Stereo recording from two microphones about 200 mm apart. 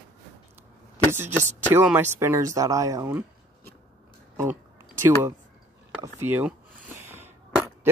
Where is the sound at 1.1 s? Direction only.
10° right (ahead or behind).